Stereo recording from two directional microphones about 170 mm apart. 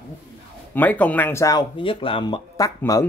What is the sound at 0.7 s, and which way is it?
Speech, 10° left (ahead or behind).